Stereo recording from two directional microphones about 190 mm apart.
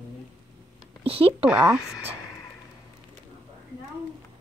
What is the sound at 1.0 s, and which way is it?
Speech, 30° right (ahead or behind).